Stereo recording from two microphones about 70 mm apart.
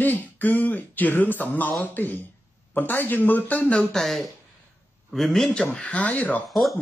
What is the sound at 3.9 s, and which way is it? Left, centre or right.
Speech, centre.